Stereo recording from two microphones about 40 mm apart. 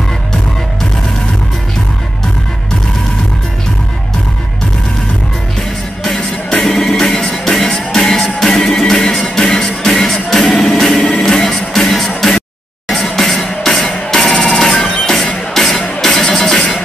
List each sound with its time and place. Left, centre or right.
5.6 s music: centre
15.5 s music: centre